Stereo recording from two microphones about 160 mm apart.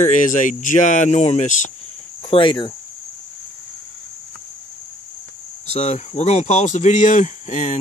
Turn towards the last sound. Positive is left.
turn(degrees=50)  # may be behind; listen again after turning